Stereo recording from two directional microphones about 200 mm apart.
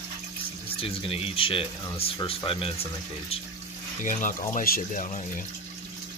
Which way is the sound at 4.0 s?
40° left (ahead or behind).